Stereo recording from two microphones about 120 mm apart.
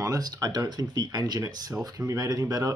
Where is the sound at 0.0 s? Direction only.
30° right (ahead or behind).